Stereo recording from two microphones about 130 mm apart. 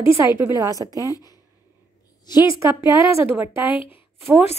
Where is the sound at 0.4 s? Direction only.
25° right (ahead or behind).